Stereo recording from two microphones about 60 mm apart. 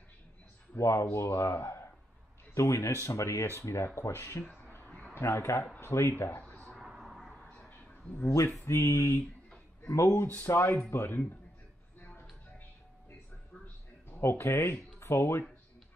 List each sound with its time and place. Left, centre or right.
0.7 s speech: left
1.5 s speech: left
2.5 s speech: left
4.6 s a sound: left
5.1 s speech: left
7.0 s a sound: centre
7.3 s a sound: centre
8.6 s speech: left
10.1 s speech: left
12.0 s music: left
14.0 s speech: left